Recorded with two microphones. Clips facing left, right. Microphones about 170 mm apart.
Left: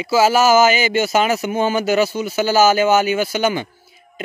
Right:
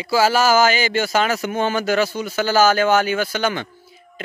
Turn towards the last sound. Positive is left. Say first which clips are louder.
# left 3 dB
turn(degrees=10)  # may be behind; listen again after turning